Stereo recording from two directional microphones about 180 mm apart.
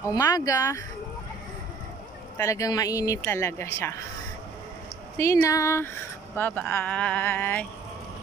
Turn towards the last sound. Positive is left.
turn(degrees=10)  # may be behind; listen again after turning